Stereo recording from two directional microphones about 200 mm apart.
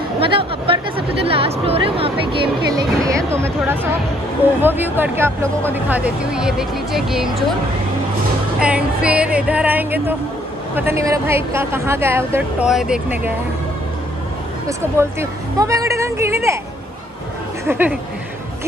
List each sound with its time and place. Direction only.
0.2 s a woman's voice: 25° right (ahead or behind)
3.3 s a woman's voice: 10° right (ahead or behind)
8.5 s a woman's voice: 5° right (ahead or behind)
14.7 s a woman's voice: 15° right (ahead or behind)
17.6 s a woman's voice: 10° right (ahead or behind)